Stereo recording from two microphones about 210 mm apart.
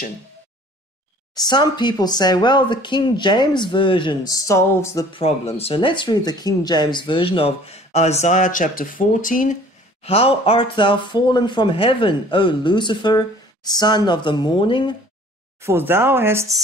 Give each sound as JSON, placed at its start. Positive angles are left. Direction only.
{"t": 1.3, "sound": "speech", "side_deg": 20}
{"t": 5.2, "sound": "speech", "side_deg": 30}
{"t": 10.0, "sound": "speech", "side_deg": 25}
{"t": 15.6, "sound": "speech", "side_deg": -10}